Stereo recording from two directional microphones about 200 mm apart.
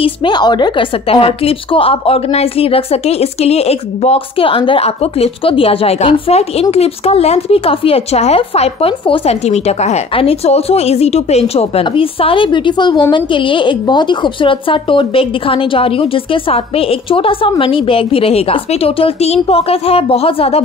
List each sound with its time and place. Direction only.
0.0 s a woman's voice: 20° left (ahead or behind)